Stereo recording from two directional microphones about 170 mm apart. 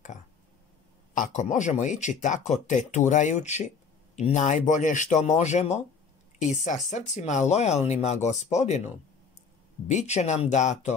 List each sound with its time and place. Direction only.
1.1 s speech: 45° left (ahead or behind)